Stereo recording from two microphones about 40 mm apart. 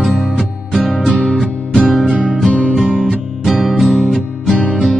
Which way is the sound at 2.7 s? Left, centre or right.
Centre.